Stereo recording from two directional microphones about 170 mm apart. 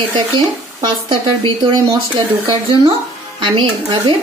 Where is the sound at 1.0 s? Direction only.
30° right (ahead or behind).